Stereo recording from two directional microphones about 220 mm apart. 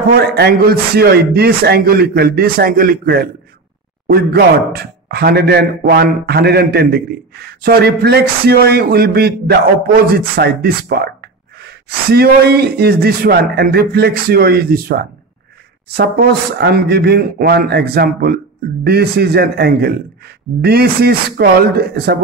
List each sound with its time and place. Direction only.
0.1 s speech: 45° right (ahead or behind)